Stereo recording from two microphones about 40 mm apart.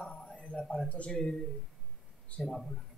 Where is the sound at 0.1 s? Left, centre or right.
Left.